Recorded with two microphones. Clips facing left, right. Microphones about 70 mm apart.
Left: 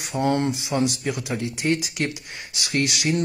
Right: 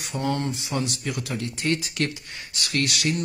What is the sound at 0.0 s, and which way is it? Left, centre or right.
Speech, left.